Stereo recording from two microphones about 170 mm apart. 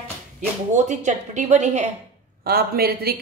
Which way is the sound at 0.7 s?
45° right (ahead or behind).